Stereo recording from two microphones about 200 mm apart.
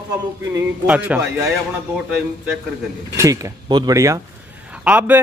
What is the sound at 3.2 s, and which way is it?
A man's voice, 15° right (ahead or behind).